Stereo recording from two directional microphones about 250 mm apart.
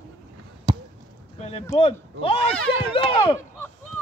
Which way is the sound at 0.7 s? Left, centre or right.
Centre.